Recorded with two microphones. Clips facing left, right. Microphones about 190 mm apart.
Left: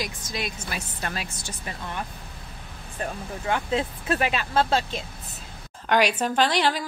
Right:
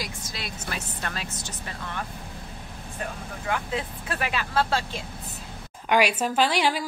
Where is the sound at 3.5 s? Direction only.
25° left (ahead or behind).